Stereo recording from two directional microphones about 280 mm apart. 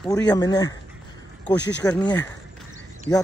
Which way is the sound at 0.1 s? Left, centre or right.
Centre.